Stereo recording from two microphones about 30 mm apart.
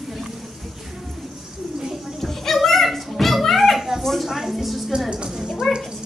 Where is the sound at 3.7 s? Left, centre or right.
Centre.